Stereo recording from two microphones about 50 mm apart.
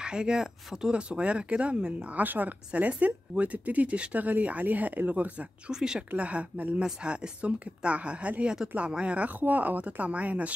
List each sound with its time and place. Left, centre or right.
0.0 s a woman's voice: centre
2.1 s a woman's voice: right
5.7 s speech: centre
6.1 s a woman's voice: right